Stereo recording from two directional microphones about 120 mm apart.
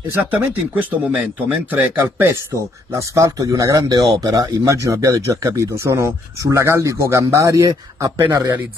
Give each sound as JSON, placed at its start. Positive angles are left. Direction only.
{"t": 0.1, "sound": "speech", "side_deg": -15}